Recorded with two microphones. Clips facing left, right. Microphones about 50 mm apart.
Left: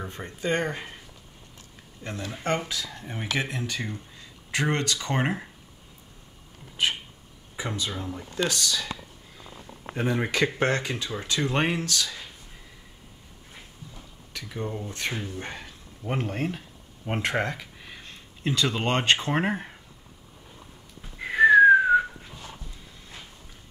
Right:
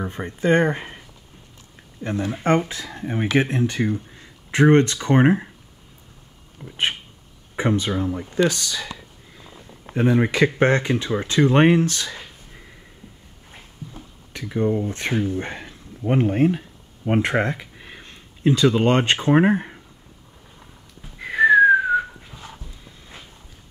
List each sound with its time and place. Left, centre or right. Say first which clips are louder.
0.0 s speech: right 8 dB; right
6.6 s speech: right 3 dB; right
9.9 s speech: right 7 dB; centre
10.6 s speech: right 7 dB; right
13.9 s a sound: right 2 dB; right
18.8 s speech: right 5 dB; right
21.2 s whistling: right 2 dB; centre
22.8 s a sound: right 3 dB; centre